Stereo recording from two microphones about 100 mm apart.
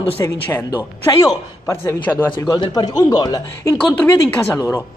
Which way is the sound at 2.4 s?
45° left (ahead or behind).